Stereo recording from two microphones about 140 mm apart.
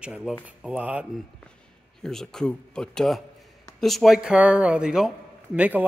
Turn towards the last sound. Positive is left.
turn(degrees=-10)  # may be behind; listen again after turning